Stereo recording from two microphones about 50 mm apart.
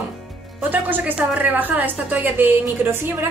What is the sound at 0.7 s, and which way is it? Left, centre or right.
A woman's voice, right.